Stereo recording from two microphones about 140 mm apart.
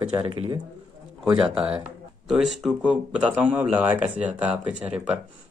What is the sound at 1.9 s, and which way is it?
Speech, 5° right (ahead or behind).